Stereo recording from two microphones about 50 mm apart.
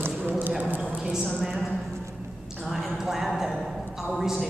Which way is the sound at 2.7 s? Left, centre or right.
Centre.